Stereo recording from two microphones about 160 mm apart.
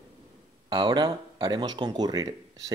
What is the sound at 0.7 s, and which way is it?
Speech, 25° right (ahead or behind).